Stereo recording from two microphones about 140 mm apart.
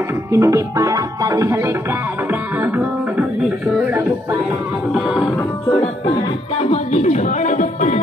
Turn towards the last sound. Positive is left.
turn(degrees=60)  # may be behind; listen again after turning